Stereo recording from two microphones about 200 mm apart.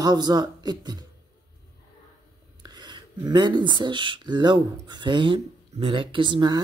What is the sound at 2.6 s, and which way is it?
Speech, 20° right (ahead or behind).